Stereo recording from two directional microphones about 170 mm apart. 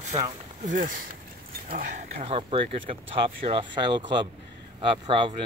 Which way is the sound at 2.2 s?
35° right (ahead or behind).